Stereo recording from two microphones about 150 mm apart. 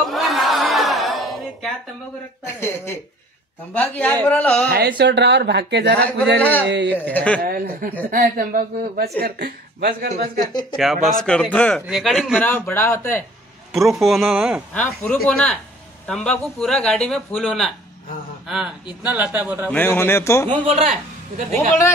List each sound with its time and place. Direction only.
0.1 s a sound: centre (ahead or behind)
2.4 s a man's voice: 15° left (ahead or behind)
4.6 s speech: 90° right
5.9 s a man's voice: 10° left (ahead or behind)
7.4 s a woman's voice: 75° right (ahead or behind)
9.2 s speech: 90° right
10.4 s speech: 25° left (ahead or behind)
10.8 s a man's voice: centre (ahead or behind)
12.4 s a man's voice: 10° left (ahead or behind)
13.7 s speech: centre (ahead or behind)
14.7 s a man's voice: 10° left (ahead or behind)
19.0 s speech: 10° right (ahead or behind)
19.7 s a man's voice: 15° left (ahead or behind)
20.4 s a man's voice: 45° right (ahead or behind)